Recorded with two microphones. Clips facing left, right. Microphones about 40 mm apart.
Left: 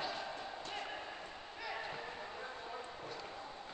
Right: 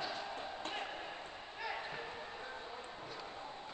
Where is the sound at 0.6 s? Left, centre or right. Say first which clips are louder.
Right 2 dB; right.